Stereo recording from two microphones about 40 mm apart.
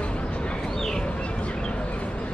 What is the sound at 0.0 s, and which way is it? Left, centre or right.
Bird, left.